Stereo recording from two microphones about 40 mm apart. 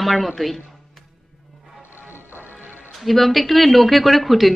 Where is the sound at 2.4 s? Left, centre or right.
Left.